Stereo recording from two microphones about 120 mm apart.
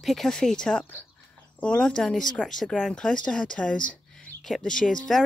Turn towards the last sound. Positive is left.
turn(degrees=5)  # may be behind; listen again after turning